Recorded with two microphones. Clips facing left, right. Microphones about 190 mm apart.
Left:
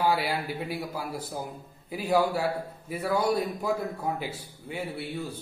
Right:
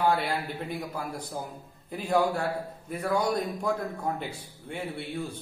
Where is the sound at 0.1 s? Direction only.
5° left (ahead or behind).